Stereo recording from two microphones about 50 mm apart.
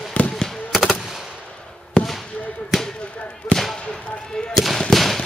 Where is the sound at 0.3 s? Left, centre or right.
Centre.